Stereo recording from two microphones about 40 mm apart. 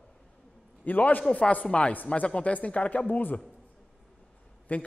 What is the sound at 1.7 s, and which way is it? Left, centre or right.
A man's voice, left.